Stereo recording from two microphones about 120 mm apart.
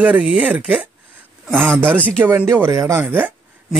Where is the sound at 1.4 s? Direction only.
5° left (ahead or behind).